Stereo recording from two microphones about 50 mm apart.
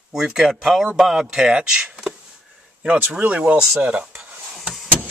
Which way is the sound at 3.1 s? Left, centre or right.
Right.